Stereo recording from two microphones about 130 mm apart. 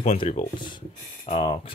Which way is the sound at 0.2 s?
55° left (ahead or behind).